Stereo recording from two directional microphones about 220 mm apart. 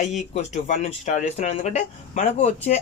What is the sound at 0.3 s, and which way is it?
Speech, 30° left (ahead or behind).